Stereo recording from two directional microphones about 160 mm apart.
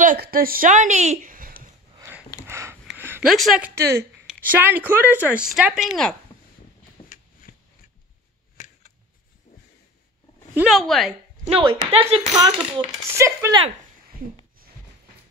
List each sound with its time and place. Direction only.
0.0 s speech: 60° right (ahead or behind); by 1.3 s 45° right (ahead or behind)
1.3 s a sound: 60° right (ahead or behind)
2.0 s a sound: 15° right (ahead or behind)
3.3 s speech: centre (ahead or behind)
3.7 s a woman's voice: 15° right (ahead or behind); by 6.1 s centre (ahead or behind)
7.5 s a sound: 70° left (ahead or behind)
10.5 s speech: 5° right (ahead or behind)
11.4 s speech: 35° right (ahead or behind)
12.4 s speech: 25° right (ahead or behind)